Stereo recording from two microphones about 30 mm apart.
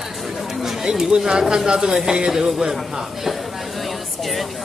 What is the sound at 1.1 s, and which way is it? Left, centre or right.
Speech, right.